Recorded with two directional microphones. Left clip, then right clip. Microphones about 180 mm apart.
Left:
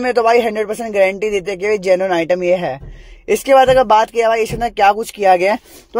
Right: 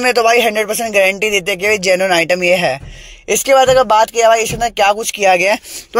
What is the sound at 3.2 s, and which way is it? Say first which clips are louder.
Speech: even; 20° left (ahead or behind).